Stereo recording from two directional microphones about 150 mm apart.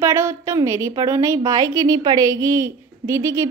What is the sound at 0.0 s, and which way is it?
A woman's voice, 20° right (ahead or behind).